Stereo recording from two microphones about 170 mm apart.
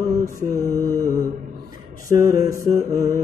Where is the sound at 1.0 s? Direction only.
20° right (ahead or behind).